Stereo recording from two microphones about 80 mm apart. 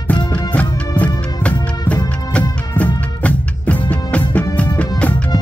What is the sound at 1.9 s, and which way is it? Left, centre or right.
Music of bollywood, centre.